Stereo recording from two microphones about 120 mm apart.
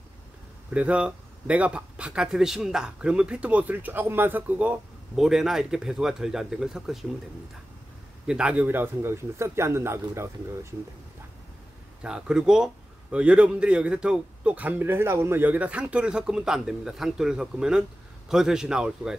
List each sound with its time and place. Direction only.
0.7 s speech: 10° right (ahead or behind)
8.3 s a man's voice: 10° right (ahead or behind)
12.0 s speech: 5° right (ahead or behind)